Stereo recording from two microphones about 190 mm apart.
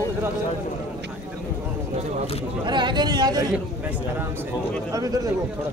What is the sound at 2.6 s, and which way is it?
Speech, 25° right (ahead or behind).